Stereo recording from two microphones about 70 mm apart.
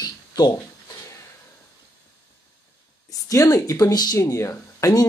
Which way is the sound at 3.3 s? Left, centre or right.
Left.